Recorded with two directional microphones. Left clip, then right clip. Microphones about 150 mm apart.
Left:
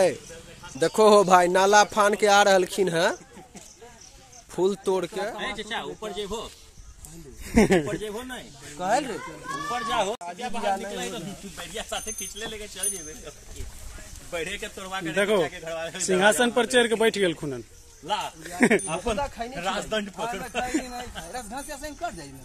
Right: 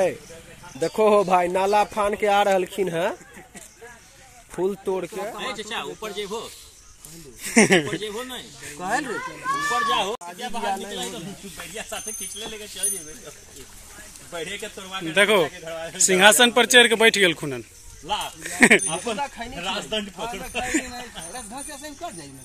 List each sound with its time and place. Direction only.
0.7 s speech: 15° left (ahead or behind)
4.6 s speech: 10° left (ahead or behind)
5.3 s speech: 5° right (ahead or behind)
9.7 s speech: 10° left (ahead or behind)
10.4 s speech: 15° right (ahead or behind)
11.5 s speech: centre (ahead or behind)
14.3 s a man's voice: 20° right (ahead or behind)
15.1 s speech: 5° right (ahead or behind)
15.4 s a man's voice: 20° right (ahead or behind)
16.0 s speech: 5° right (ahead or behind)
19.1 s speech: 20° left (ahead or behind)
19.5 s speech: 5° right (ahead or behind)